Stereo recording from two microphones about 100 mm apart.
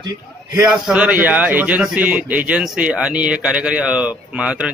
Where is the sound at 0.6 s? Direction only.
10° right (ahead or behind).